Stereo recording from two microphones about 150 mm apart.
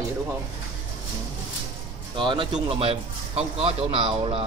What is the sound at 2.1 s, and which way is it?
A man's voice, 35° right (ahead or behind).